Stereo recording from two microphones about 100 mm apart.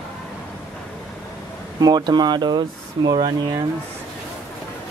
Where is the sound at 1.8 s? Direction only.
45° right (ahead or behind).